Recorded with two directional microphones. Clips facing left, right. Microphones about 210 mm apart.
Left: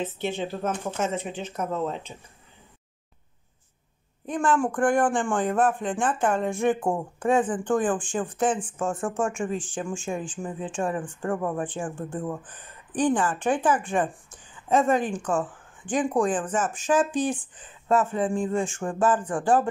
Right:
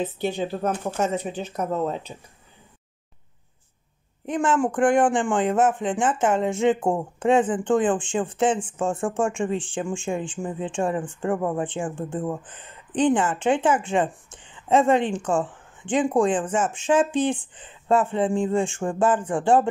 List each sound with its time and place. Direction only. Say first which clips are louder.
0.0 s speech: right 3 dB; 40° right (ahead or behind)
4.3 s speech: right 2 dB; 20° right (ahead or behind)